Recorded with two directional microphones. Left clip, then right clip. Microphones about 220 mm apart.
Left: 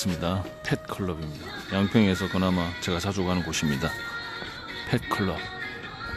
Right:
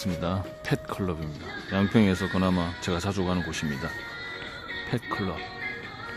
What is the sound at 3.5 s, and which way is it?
Speech, 15° left (ahead or behind).